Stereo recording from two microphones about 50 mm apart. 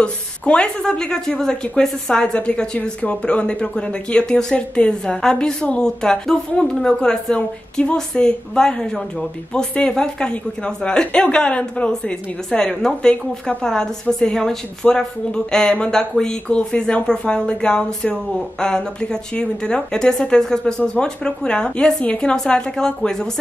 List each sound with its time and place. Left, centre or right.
0.0 s a woman's voice: centre